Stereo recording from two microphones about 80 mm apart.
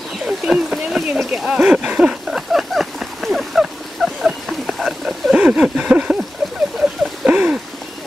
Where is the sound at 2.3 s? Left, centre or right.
Centre.